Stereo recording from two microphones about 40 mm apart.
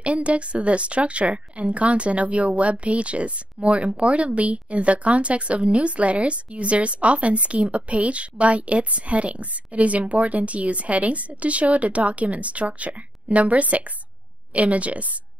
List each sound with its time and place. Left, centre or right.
0.0 s a woman's voice: right